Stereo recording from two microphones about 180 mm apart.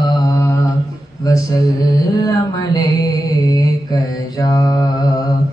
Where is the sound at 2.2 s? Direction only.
20° left (ahead or behind).